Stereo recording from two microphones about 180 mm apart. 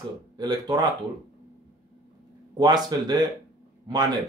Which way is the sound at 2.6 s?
20° right (ahead or behind).